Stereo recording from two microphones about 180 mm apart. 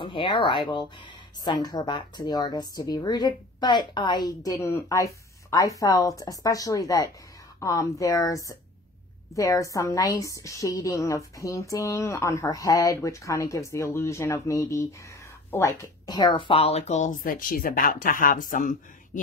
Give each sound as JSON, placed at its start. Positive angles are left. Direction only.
{"t": 0.0, "sound": "a woman's voice", "side_deg": 25}